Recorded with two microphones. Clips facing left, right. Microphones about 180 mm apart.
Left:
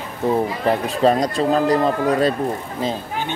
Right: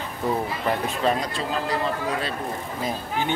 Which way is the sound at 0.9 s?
35° left (ahead or behind).